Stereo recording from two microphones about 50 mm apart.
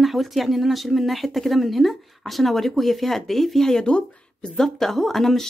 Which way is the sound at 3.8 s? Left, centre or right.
Left.